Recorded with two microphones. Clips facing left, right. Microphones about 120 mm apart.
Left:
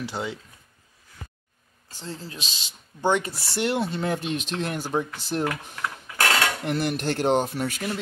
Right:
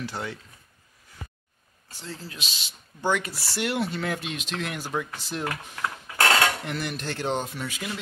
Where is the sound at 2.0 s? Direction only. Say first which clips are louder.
Left 2 dB; 30° left (ahead or behind).